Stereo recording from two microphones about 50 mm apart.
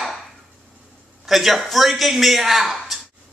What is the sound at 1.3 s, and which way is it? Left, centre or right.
Speech, centre.